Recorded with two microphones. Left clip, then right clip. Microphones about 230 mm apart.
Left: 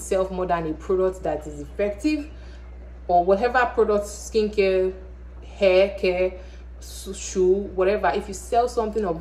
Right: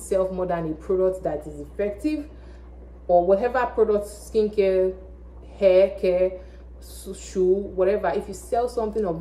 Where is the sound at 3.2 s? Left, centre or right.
Centre.